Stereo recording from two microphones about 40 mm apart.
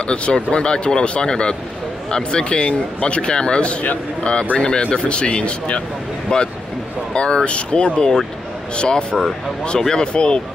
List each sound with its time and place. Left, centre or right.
0.0 s speech: left